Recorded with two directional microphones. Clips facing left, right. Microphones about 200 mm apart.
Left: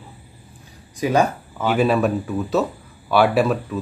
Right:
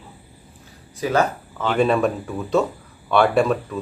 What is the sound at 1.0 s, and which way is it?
Speech, 15° left (ahead or behind).